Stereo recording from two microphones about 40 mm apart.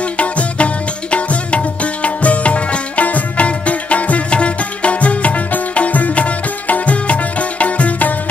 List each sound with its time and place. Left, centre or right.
0.0 s music: left